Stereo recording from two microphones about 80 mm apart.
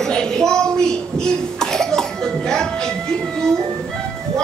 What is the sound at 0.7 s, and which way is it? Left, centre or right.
Cough, centre.